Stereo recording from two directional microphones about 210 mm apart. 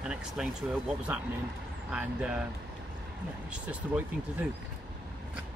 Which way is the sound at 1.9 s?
5° right (ahead or behind).